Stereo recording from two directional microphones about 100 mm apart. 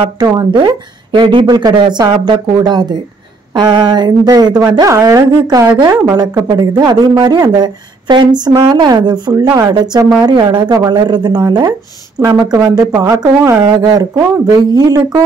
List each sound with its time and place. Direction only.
0.2 s speech: 45° right (ahead or behind)
1.4 s speech: 40° right (ahead or behind)
12.5 s speech: 30° right (ahead or behind)